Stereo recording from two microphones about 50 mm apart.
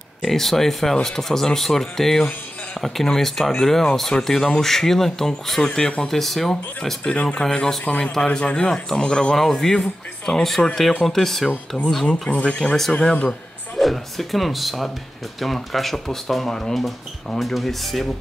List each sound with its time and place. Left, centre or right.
0.2 s speech: centre
7.2 s speech: left
7.4 s speech: centre
9.3 s speech: centre
11.1 s speech: centre
12.1 s speech: left
13.7 s speech: centre